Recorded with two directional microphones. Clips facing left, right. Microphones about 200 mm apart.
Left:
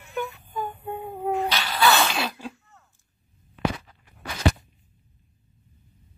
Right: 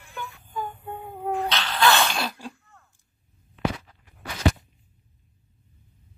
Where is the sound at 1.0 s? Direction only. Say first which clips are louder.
Left 2 dB; 5° left (ahead or behind).